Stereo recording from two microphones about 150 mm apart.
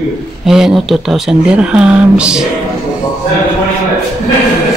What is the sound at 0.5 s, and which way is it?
A woman's voice, 5° right (ahead or behind).